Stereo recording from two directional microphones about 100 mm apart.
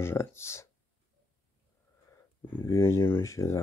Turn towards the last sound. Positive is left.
turn(degrees=30)  # may be behind; listen again after turning